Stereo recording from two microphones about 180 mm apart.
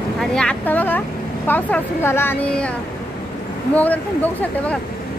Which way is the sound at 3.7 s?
10° left (ahead or behind).